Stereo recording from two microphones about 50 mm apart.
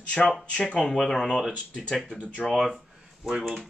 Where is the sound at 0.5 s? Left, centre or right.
Left.